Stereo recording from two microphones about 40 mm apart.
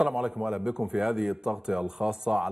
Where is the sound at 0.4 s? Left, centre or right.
Centre.